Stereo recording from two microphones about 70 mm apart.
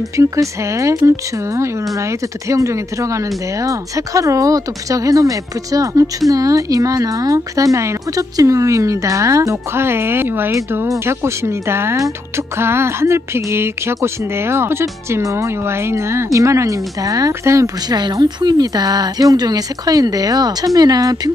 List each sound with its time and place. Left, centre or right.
0.2 s speech: right
17.3 s speech: right
17.8 s speech: right